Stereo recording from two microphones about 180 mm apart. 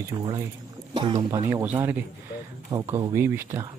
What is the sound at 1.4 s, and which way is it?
Speech, 15° right (ahead or behind).